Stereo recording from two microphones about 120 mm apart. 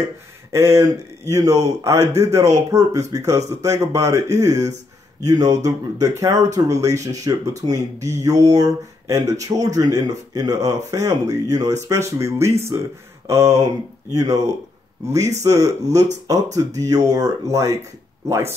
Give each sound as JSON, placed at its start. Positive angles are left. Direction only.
{"t": 0.5, "sound": "speech", "side_deg": -25}